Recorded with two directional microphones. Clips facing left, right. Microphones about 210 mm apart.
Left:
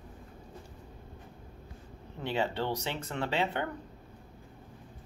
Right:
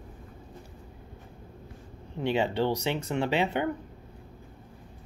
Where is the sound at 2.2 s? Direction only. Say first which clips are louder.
Right 5 dB; 15° right (ahead or behind).